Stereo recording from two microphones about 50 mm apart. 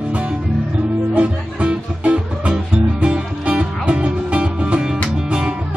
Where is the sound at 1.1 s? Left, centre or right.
Right.